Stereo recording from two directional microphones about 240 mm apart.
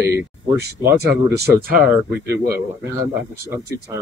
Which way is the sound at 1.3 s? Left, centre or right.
Right.